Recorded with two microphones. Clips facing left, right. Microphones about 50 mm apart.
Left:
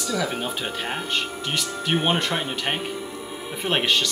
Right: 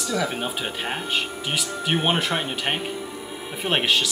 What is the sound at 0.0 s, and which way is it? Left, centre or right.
Speech, centre.